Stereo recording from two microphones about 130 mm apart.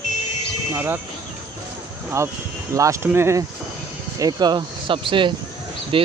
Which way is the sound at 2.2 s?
25° right (ahead or behind).